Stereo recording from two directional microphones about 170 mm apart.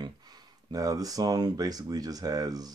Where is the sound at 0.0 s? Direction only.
25° right (ahead or behind).